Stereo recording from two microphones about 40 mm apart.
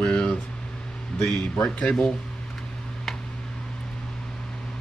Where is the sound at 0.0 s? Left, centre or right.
Left.